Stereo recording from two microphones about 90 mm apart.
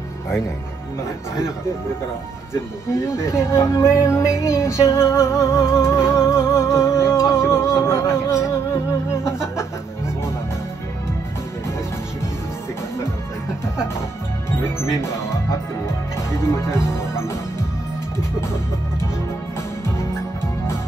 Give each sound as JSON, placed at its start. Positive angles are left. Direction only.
{"t": 2.5, "sound": "speech", "side_deg": 30}
{"t": 5.9, "sound": "music", "side_deg": -5}
{"t": 6.1, "sound": "music", "side_deg": 30}
{"t": 7.8, "sound": "speech", "side_deg": 30}
{"t": 16.3, "sound": "music", "side_deg": 30}